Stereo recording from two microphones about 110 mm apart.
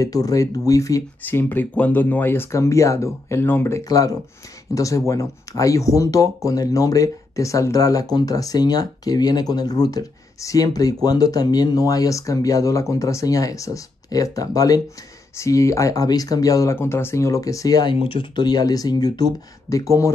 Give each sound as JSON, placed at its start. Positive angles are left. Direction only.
{"t": 0.0, "sound": "speech", "side_deg": 30}
{"t": 1.2, "sound": "speech", "side_deg": 20}
{"t": 18.0, "sound": "speech", "side_deg": 50}